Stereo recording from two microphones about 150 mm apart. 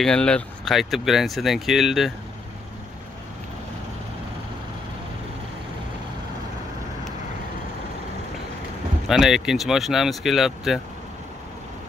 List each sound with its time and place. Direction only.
0.0 s speech: 5° left (ahead or behind)
9.0 s speech: 5° right (ahead or behind)